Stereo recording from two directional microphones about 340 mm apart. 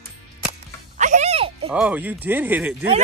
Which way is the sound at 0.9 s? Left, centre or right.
Right.